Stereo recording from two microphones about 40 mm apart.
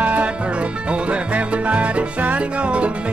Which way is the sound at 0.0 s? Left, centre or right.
Right.